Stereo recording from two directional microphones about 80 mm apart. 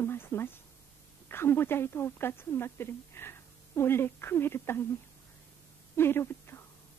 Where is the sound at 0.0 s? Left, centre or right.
Left.